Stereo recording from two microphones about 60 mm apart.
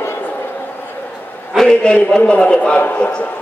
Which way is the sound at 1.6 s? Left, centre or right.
Centre.